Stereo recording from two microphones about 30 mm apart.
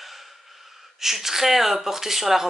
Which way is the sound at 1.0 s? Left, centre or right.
Centre.